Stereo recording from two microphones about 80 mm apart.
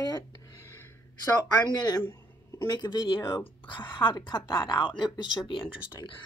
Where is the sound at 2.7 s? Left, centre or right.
Left.